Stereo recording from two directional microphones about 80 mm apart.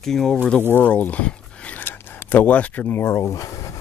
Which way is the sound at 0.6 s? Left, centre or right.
Left.